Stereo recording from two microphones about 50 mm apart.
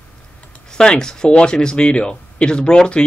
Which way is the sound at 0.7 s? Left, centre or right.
Centre.